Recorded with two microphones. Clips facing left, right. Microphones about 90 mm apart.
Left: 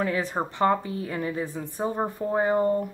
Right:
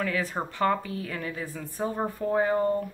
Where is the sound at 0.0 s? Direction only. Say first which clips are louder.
Left 3 dB; 25° left (ahead or behind).